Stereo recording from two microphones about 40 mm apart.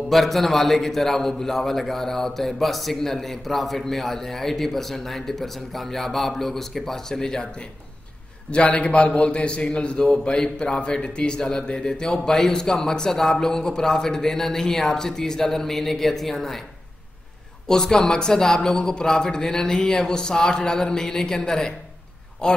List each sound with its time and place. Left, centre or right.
0.1 s a man's voice: centre
8.5 s a man's voice: left; by 16.6 s centre
17.6 s a man's voice: centre